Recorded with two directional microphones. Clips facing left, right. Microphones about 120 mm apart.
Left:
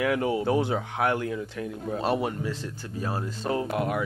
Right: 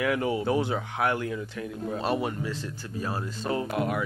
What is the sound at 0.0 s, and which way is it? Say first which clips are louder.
Speech: left 1 dB; 40° left (ahead or behind).